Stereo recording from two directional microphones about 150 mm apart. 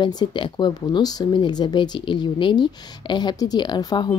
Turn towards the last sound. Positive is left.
turn(degrees=30)  # may be behind; listen again after turning